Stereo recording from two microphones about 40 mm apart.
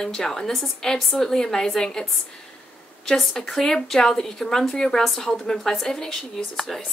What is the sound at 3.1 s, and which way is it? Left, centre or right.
A woman's voice, centre.